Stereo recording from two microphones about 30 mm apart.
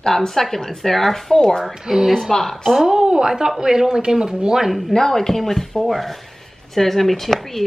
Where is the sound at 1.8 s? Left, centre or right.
Centre.